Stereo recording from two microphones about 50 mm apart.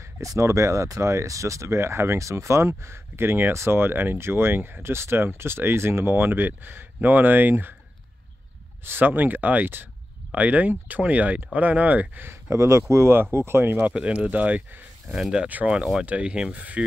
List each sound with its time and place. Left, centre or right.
0.0 s speech: right
3.5 s speech: right
8.8 s speech: right
12.3 s speech: right
13.1 s speech: right
13.9 s speech: right
15.7 s speech: centre